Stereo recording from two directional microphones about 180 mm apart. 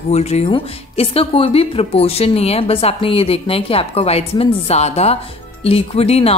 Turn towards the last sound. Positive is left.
turn(degrees=35)  # may be behind; listen again after turning